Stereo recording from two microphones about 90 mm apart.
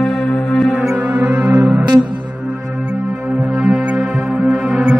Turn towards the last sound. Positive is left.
turn(degrees=-5)  # may be behind; listen again after turning